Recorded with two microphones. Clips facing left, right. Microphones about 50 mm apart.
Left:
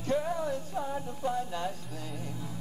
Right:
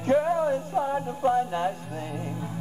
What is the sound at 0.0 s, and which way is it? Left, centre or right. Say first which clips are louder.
Music: right 8 dB; right.